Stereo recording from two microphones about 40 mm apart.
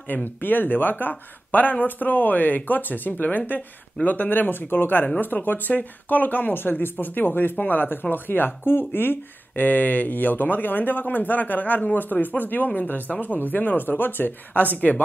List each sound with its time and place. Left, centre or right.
0.1 s speech: left